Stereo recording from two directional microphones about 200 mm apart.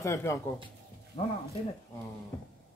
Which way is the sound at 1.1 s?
30° left (ahead or behind).